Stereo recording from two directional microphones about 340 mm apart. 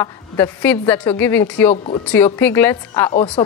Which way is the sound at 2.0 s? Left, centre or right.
Centre.